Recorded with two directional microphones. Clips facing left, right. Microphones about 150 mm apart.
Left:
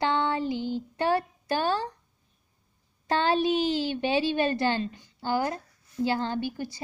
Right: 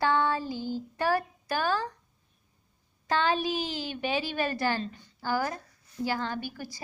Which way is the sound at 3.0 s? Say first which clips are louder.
Left 3 dB; 30° left (ahead or behind).